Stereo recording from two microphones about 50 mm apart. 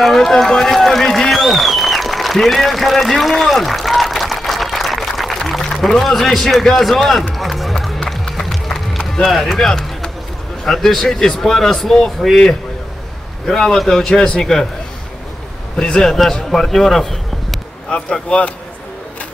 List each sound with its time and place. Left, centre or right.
0.0 s run: centre
5.5 s a sound: centre
5.9 s a man's voice: centre
7.3 s music: centre
8.1 s run: centre
10.6 s a man's voice: centre
15.8 s speech: centre
16.4 s a sound: centre
17.9 s a man's voice: centre